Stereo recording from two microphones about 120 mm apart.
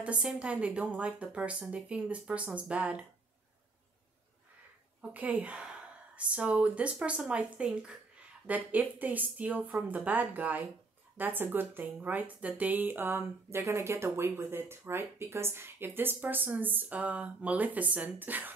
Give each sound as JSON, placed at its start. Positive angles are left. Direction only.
{"t": 0.0, "sound": "speech", "side_deg": -10}
{"t": 5.1, "sound": "speech", "side_deg": -15}